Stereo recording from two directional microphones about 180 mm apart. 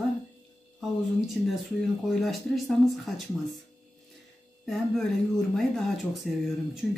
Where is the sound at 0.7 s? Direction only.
Centre (ahead or behind).